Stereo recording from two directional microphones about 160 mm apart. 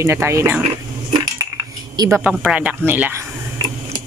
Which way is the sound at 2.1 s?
5° right (ahead or behind).